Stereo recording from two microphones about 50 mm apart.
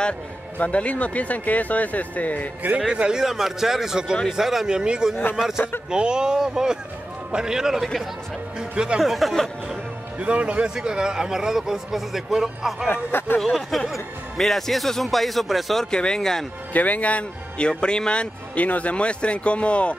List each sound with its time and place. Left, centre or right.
0.6 s speech: left
2.9 s a man's voice: centre
4.6 s a man's voice: centre
9.0 s speech: centre
10.1 s a man's voice: right
10.8 s a man's voice: centre
12.8 s speech: left
13.4 s speech: centre
15.9 s speech: centre
16.7 s a man's voice: left